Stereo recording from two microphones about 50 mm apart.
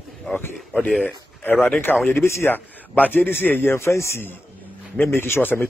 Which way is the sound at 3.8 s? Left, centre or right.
Left.